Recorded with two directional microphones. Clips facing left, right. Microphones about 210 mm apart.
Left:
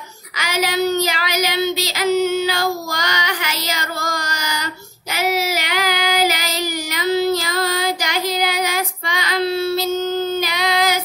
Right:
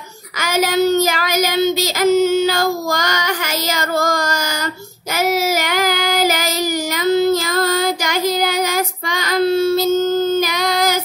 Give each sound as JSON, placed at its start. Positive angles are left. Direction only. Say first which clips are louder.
{"t": 0.4, "sound": "child singing", "louder": "right 4 dB", "side_deg": -45}